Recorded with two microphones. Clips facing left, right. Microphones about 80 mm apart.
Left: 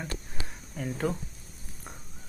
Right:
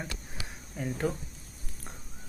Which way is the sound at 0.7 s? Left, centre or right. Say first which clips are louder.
Left 1 dB; centre.